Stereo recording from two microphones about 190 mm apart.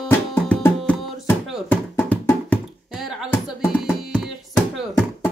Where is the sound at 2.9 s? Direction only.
5° right (ahead or behind).